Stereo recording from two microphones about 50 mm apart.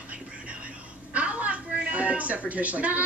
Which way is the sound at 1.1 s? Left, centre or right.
Right.